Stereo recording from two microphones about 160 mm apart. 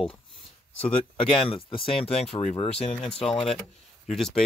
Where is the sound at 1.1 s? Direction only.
35° left (ahead or behind).